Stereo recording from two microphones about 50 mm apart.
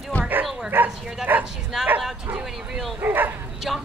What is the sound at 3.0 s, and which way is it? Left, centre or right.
Speech, right.